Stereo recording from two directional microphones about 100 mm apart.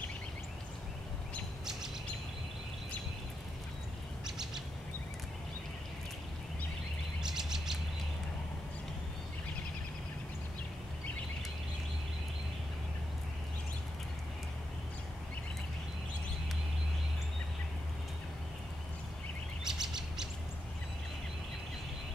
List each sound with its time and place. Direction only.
7.2 s chirp: 5° right (ahead or behind)
19.6 s bird: 5° right (ahead or behind)